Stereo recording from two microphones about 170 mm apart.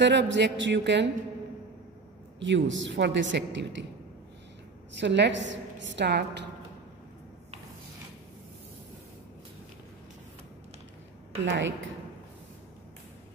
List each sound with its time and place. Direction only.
0.0 s a woman's voice: 90° right
2.4 s a woman's voice: 90° right
5.0 s a woman's voice: 90° right
11.4 s a woman's voice: 90° right